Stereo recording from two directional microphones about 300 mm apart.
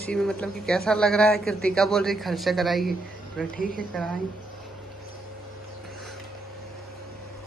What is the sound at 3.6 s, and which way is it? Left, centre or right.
Speech, left.